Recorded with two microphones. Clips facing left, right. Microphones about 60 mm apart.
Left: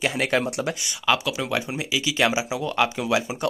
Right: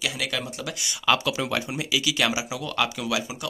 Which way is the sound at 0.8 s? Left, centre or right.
Centre.